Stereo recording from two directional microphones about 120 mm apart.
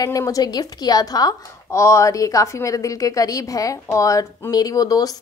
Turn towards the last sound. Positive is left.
turn(degrees=30)  # may be behind; listen again after turning